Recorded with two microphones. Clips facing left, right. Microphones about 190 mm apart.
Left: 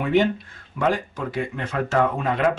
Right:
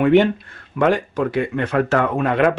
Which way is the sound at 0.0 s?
65° right (ahead or behind).